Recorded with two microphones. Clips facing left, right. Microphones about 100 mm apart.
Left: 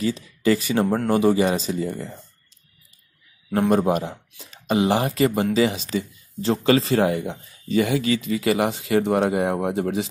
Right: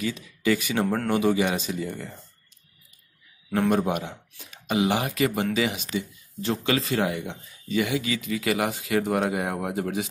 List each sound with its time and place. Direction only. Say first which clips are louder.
0.0 s speech: left 5 dB; 35° left (ahead or behind)
3.5 s speech: left 4 dB; 35° left (ahead or behind)